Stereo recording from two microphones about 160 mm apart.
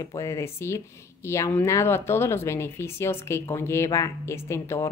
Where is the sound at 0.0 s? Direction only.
20° left (ahead or behind).